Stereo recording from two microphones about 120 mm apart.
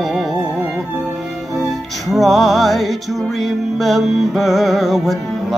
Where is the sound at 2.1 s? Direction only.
Centre (ahead or behind).